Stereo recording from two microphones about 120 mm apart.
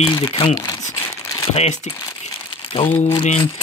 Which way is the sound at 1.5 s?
70° left (ahead or behind).